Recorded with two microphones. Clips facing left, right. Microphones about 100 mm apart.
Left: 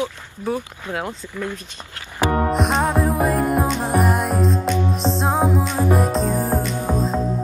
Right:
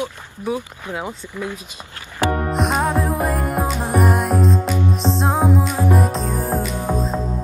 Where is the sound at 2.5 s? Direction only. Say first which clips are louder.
Even; centre (ahead or behind).